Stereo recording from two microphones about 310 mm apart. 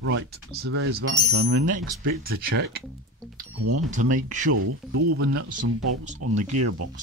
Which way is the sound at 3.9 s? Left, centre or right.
Right.